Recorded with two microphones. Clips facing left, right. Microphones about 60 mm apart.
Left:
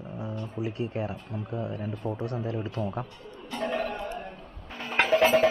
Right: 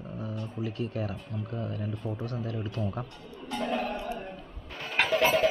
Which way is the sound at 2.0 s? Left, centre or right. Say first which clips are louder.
Left 5 dB; left.